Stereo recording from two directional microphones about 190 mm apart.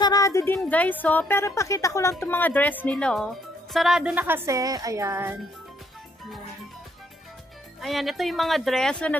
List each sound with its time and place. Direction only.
0.0 s a woman's voice: 20° left (ahead or behind); by 5.4 s 15° right (ahead or behind)
7.8 s speech: centre (ahead or behind)